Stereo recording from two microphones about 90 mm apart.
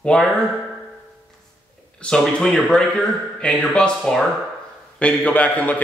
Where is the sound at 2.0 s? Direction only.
10° left (ahead or behind).